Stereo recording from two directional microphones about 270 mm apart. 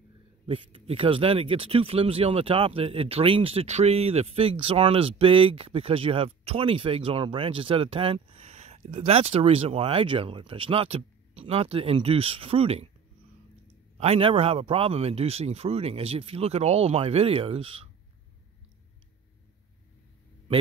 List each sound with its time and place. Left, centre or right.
0.5 s speech: centre
13.9 s speech: right